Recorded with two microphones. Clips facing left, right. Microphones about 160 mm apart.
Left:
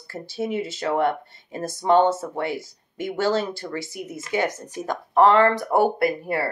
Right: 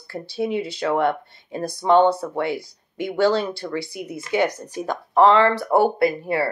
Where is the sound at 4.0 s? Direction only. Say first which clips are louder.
Right 3 dB; 15° right (ahead or behind).